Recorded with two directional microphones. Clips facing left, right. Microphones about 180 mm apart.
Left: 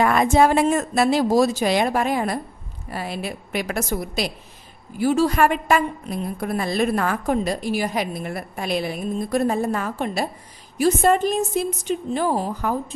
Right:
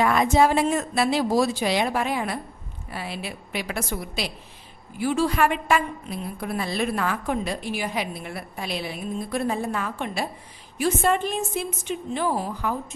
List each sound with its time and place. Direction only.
0.0 s a woman's voice: 50° left (ahead or behind)